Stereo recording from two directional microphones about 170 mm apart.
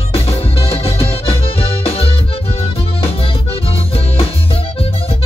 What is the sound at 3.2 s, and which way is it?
Music, 35° left (ahead or behind).